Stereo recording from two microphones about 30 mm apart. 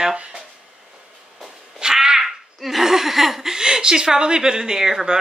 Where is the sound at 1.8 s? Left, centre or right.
Right.